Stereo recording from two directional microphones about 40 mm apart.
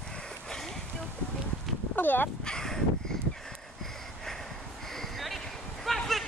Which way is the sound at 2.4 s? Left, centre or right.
Centre.